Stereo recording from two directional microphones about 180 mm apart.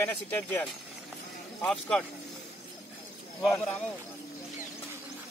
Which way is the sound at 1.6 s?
5° left (ahead or behind).